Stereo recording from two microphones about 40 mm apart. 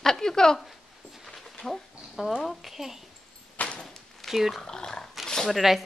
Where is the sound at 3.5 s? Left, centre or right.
Left.